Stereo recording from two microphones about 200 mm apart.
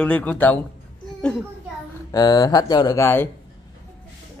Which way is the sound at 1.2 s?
5° left (ahead or behind).